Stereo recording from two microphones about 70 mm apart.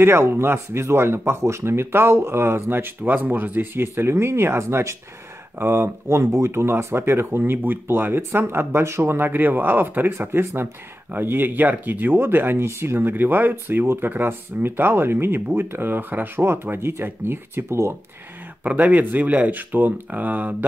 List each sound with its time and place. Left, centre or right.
0.0 s speech: right
18.6 s speech: right